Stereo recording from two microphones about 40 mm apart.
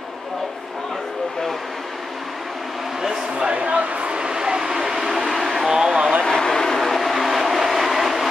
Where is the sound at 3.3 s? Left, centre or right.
Right.